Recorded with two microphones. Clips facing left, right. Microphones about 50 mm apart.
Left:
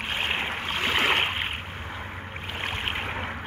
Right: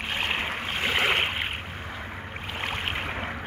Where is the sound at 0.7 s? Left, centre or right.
Centre.